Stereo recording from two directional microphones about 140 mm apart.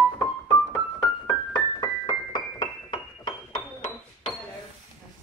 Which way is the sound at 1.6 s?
25° left (ahead or behind).